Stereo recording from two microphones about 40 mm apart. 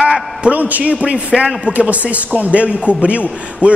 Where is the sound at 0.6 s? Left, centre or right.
Right.